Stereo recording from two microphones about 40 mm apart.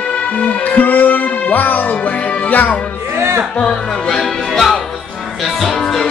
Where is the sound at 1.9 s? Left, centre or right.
Left.